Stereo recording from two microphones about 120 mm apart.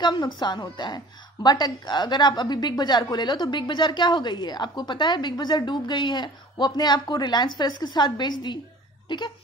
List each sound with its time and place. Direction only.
0.0 s a woman's voice: 40° left (ahead or behind)